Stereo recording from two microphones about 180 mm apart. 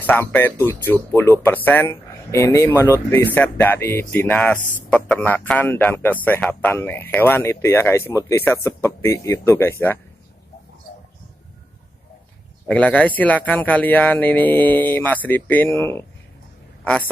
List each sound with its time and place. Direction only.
0.0 s speech: 10° left (ahead or behind)
4.6 s speech: 45° left (ahead or behind)
4.8 s speech: 5° left (ahead or behind)
12.6 s speech: 10° left (ahead or behind)